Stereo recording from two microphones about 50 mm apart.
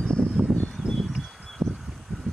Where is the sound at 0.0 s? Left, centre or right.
Left.